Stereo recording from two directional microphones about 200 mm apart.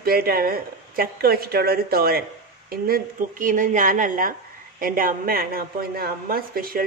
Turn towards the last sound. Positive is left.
turn(degrees=-45)  # may be behind; listen again after turning